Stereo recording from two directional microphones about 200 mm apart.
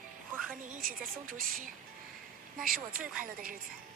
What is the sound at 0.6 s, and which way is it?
A woman's voice, 45° right (ahead or behind).